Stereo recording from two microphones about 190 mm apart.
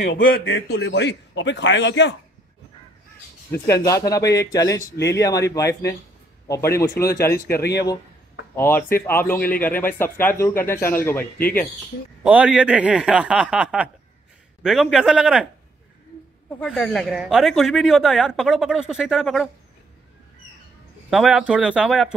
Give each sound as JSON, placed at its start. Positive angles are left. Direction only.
{"t": 0.1, "sound": "a man's voice", "side_deg": 55}
{"t": 3.6, "sound": "speech", "side_deg": 15}
{"t": 7.4, "sound": "a man's voice", "side_deg": 55}
{"t": 8.5, "sound": "speech", "side_deg": 10}
{"t": 12.2, "sound": "speech", "side_deg": -5}
{"t": 16.5, "sound": "speech", "side_deg": 5}
{"t": 21.1, "sound": "speech", "side_deg": 0}